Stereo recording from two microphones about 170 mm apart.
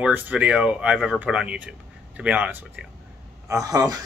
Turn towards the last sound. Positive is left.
turn(degrees=-20)  # may be behind; listen again after turning